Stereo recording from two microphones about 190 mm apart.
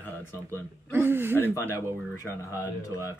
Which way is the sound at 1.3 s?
10° left (ahead or behind).